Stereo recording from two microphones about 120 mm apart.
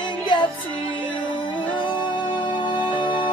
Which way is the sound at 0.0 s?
40° left (ahead or behind).